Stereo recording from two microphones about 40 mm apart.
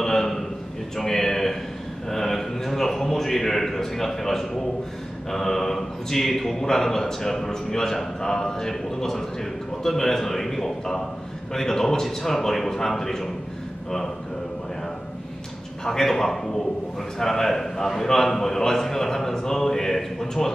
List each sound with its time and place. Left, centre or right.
0.0 s a sound: centre
2.0 s a man's voice: centre
15.8 s a man's voice: centre